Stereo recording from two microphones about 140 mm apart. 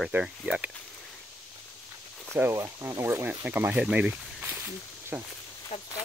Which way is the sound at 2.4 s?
20° right (ahead or behind).